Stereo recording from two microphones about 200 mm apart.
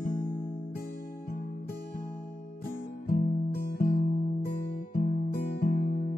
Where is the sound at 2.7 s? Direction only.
40° left (ahead or behind).